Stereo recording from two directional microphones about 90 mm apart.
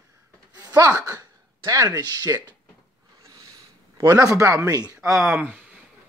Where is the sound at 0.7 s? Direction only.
40° right (ahead or behind).